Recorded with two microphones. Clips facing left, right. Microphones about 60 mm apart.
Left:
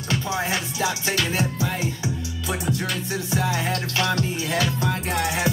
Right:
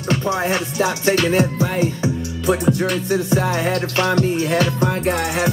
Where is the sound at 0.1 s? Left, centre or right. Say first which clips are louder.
Right 6 dB; right.